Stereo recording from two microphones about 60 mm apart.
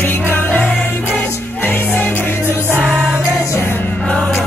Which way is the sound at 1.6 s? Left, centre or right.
Left.